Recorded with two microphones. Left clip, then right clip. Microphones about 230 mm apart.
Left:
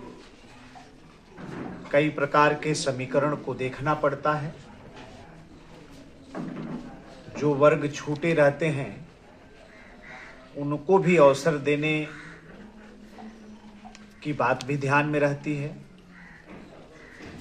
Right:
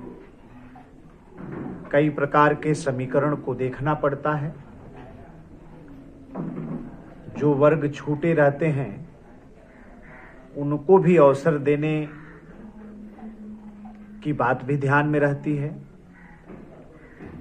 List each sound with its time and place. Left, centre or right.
1.9 s speech: centre
7.3 s speech: centre
10.6 s speech: centre
14.2 s speech: centre